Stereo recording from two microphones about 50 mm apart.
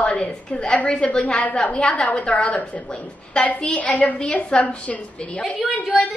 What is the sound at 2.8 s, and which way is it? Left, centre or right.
A woman's voice, centre.